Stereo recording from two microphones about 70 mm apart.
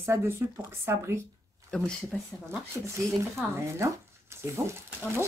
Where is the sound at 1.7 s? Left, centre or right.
Centre.